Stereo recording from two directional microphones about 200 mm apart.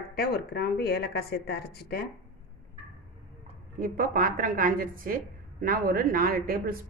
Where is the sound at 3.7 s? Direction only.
45° right (ahead or behind).